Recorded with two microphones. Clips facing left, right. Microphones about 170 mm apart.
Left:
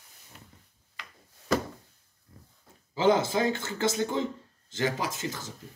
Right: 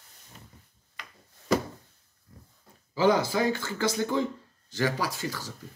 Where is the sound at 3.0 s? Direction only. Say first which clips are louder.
Even; 25° left (ahead or behind).